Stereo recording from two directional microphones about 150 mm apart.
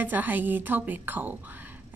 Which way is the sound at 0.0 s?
10° right (ahead or behind).